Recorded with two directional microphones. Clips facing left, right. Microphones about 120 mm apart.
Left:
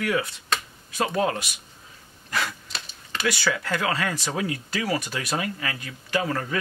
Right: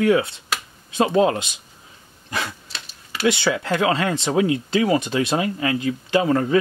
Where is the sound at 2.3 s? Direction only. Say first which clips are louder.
Right 1 dB; 20° right (ahead or behind).